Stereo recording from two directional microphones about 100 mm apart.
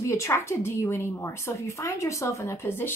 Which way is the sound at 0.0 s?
30° left (ahead or behind).